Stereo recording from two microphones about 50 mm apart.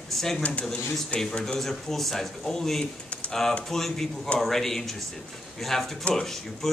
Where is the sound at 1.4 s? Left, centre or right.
Centre.